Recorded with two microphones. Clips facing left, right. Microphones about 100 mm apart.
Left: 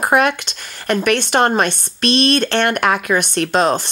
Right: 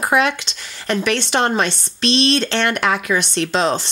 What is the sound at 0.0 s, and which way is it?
Speech, 50° left (ahead or behind).